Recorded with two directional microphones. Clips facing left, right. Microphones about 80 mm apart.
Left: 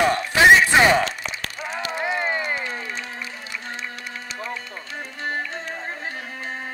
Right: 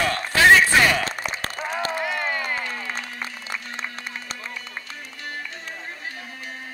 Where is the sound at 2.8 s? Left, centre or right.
Right.